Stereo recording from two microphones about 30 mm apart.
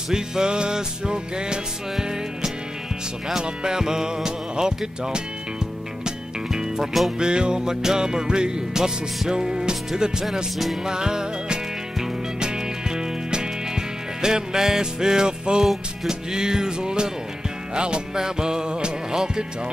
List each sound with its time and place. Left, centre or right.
0.1 s music: right
3.6 s music: right
6.8 s music: centre
7.2 s music: right
7.8 s music: centre
18.1 s music: right